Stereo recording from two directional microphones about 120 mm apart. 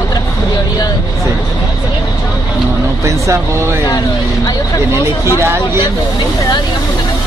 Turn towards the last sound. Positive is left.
turn(degrees=-20)  # may be behind; listen again after turning